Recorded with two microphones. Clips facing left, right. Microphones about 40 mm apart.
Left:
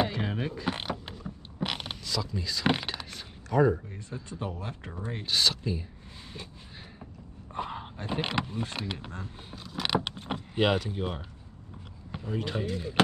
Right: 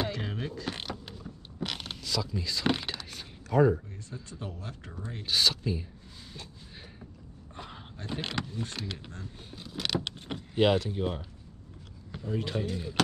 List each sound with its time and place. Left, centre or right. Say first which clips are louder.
0.0 s creak: left 4 dB; centre
2.0 s speech: even; centre
2.6 s a sound: left 3 dB; centre
3.7 s speech: left 1 dB; left
5.2 s speech: even; centre
7.5 s speech: left 9 dB; left
9.8 s vehicle: left 3 dB; centre
10.2 s door: left 3 dB; centre
10.6 s speech: right 2 dB; centre
12.1 s a sound: right 1 dB; centre
12.6 s speech: left 2 dB; centre